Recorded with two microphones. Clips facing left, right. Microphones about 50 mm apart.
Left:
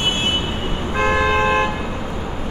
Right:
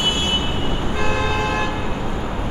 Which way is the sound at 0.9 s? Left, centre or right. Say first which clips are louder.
Left 6 dB; left.